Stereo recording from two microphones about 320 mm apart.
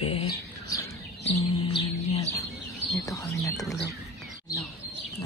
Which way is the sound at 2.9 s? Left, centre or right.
Centre.